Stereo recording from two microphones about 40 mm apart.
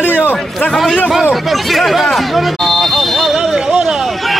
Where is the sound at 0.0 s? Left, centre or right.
Left.